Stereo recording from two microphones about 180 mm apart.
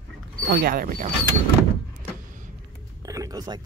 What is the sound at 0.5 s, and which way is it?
Speech, 60° right (ahead or behind).